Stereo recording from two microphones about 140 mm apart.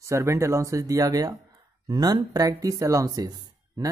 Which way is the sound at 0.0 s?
20° right (ahead or behind).